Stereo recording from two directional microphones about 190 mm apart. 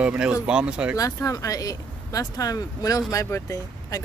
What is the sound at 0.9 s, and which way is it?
Speech, 15° left (ahead or behind).